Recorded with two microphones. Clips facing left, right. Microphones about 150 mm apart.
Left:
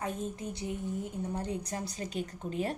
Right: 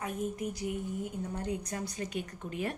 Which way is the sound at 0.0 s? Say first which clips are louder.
Right 1 dB; 25° left (ahead or behind).